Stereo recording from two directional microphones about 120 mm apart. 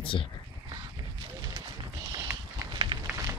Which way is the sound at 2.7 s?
45° right (ahead or behind).